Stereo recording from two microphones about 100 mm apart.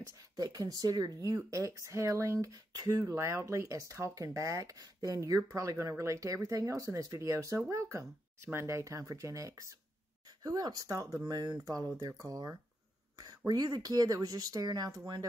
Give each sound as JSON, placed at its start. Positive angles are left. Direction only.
{"t": 0.0, "sound": "speech", "side_deg": -40}
{"t": 13.5, "sound": "speech", "side_deg": -45}